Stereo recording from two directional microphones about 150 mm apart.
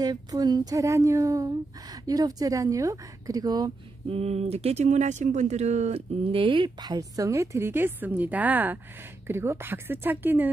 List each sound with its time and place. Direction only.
0.0 s a woman's voice: 25° right (ahead or behind)
4.1 s speech: 45° right (ahead or behind); by 10.5 s 15° right (ahead or behind)